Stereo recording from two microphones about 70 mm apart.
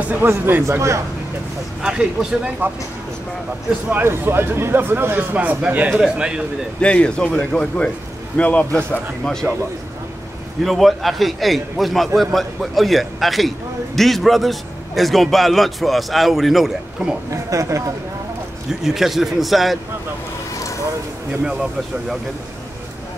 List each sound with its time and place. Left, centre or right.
0.0 s speech: right
0.3 s a man's voice: right
1.8 s speech: centre
3.9 s speech: right; by 6.4 s centre
6.8 s a man's voice: centre
9.2 s speech: centre
10.6 s a man's voice: centre
17.3 s speech: right
18.7 s a man's voice: centre